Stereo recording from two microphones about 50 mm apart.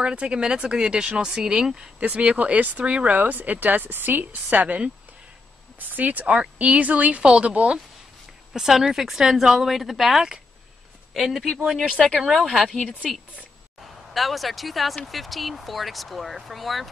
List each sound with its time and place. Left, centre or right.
0.0 s speech: right
2.0 s a woman's voice: right
8.5 s speech: centre
14.1 s speech: centre